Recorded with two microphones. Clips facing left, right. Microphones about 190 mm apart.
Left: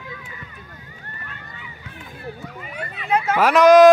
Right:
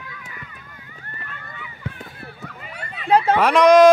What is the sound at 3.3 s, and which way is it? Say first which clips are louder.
Speech: left 2 dB; centre (ahead or behind).